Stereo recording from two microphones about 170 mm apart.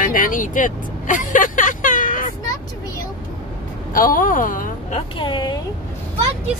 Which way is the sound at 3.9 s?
55° left (ahead or behind).